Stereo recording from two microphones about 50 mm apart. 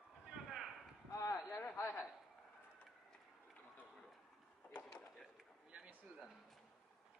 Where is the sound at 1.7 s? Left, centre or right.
Left.